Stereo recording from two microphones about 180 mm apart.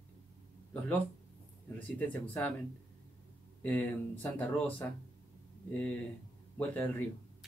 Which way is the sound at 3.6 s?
10° left (ahead or behind).